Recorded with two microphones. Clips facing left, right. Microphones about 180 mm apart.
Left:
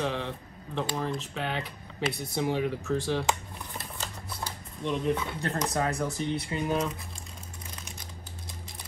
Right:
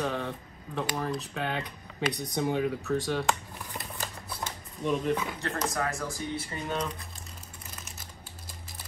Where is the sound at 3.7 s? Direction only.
20° right (ahead or behind).